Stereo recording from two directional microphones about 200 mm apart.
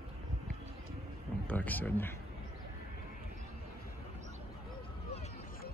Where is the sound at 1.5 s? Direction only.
10° left (ahead or behind).